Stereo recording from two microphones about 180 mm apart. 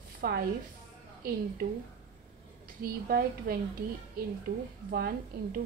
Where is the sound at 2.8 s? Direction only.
55° right (ahead or behind).